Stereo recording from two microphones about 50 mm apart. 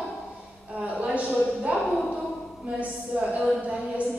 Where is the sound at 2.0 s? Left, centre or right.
Centre.